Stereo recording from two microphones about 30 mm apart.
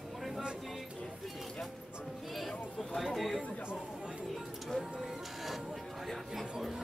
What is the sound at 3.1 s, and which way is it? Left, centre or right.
Speech, centre.